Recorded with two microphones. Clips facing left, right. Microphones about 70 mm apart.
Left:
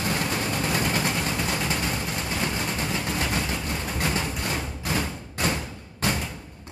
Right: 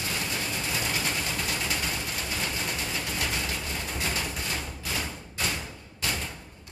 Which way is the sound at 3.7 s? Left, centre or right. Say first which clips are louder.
Left 4 dB; left.